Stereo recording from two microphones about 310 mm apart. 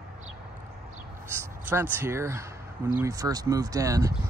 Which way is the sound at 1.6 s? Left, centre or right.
Centre.